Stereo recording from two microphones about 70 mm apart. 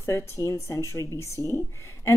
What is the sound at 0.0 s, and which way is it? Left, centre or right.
A woman's voice, left.